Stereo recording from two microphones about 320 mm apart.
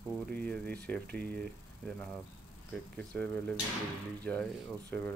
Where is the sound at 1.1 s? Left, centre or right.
Right.